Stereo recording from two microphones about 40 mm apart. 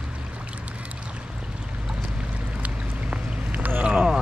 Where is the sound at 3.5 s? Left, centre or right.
Right.